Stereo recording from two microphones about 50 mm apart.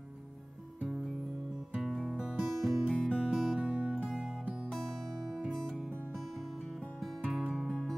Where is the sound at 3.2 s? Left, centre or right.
Centre.